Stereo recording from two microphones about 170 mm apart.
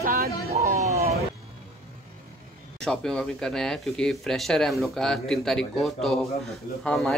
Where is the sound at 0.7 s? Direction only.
20° right (ahead or behind).